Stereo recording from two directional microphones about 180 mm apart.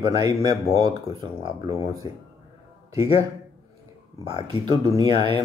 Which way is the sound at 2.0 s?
25° left (ahead or behind).